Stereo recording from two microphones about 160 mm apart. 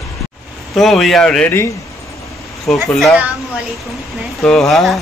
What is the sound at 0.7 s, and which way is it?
Speech, centre (ahead or behind).